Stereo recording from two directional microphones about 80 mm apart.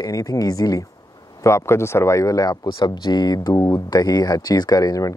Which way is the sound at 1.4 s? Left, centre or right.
Left.